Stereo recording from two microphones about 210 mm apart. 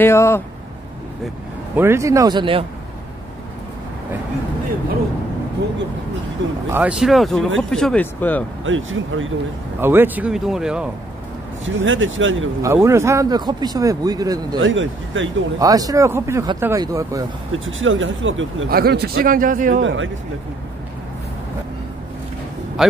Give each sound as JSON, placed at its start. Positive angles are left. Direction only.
{"t": 0.0, "sound": "speech", "side_deg": 10}
{"t": 1.8, "sound": "speech", "side_deg": -10}
{"t": 6.7, "sound": "speech", "side_deg": -5}
{"t": 8.6, "sound": "speech", "side_deg": -65}
{"t": 9.8, "sound": "speech", "side_deg": -10}
{"t": 11.6, "sound": "speech", "side_deg": -65}
{"t": 12.6, "sound": "speech", "side_deg": -15}
{"t": 14.6, "sound": "speech", "side_deg": -65}
{"t": 15.6, "sound": "speech", "side_deg": -15}
{"t": 17.5, "sound": "speech", "side_deg": -70}
{"t": 18.7, "sound": "a man's voice", "side_deg": -50}
{"t": 19.7, "sound": "speech", "side_deg": -60}
{"t": 22.8, "sound": "a man's voice", "side_deg": 0}